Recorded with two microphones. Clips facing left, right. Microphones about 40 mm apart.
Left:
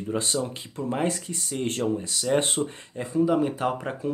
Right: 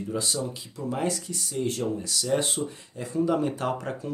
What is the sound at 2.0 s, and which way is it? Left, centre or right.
Speech, left.